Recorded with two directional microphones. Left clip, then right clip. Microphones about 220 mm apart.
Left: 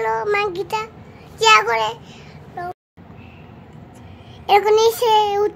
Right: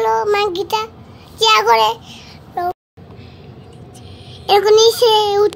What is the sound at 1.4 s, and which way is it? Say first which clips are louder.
Speech: even; 5° right (ahead or behind).